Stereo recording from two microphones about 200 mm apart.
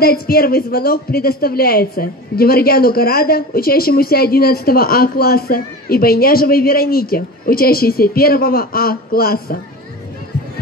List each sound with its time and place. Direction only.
0.0 s a woman's voice: 50° left (ahead or behind)